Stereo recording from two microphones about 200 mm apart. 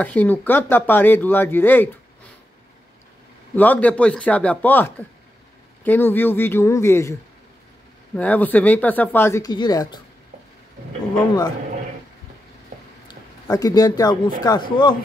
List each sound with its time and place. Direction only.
0.0 s speech: 10° left (ahead or behind)
3.5 s speech: 10° left (ahead or behind)
8.2 s speech: 10° left (ahead or behind)
13.1 s speech: 20° left (ahead or behind)